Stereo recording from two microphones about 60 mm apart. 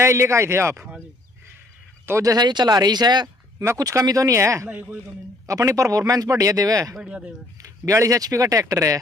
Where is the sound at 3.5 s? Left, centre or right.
Right.